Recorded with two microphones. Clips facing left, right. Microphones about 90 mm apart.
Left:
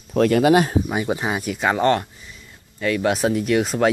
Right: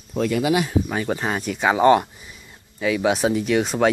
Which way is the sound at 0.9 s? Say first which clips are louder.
Left 1 dB; 15° left (ahead or behind).